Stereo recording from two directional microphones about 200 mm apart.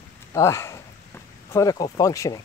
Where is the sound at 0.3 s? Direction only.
15° left (ahead or behind).